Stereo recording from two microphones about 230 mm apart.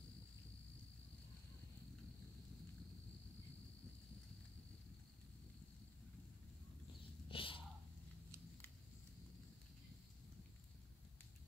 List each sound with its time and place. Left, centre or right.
7.2 s bird: left